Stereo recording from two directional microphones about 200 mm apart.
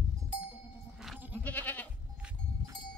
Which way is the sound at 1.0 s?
5° right (ahead or behind).